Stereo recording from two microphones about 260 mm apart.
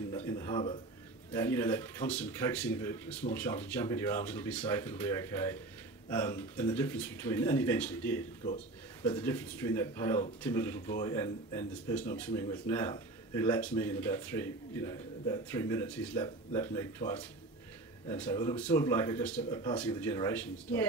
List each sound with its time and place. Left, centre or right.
0.1 s a man's voice: centre
18.0 s speech: centre